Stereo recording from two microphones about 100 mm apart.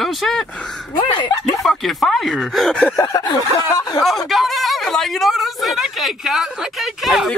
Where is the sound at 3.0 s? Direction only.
40° left (ahead or behind).